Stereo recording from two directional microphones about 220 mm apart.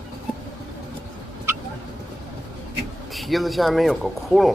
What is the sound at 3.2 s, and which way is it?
Speech, centre (ahead or behind).